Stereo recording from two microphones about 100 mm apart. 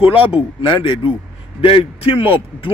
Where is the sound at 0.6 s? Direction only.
60° left (ahead or behind).